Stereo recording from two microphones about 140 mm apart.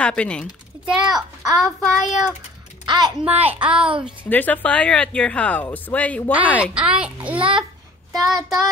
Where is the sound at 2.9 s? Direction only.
30° right (ahead or behind).